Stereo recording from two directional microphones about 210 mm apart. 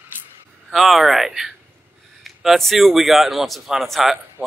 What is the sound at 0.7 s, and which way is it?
Speech, centre (ahead or behind).